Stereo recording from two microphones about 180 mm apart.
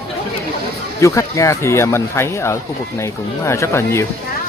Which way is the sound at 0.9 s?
15° left (ahead or behind).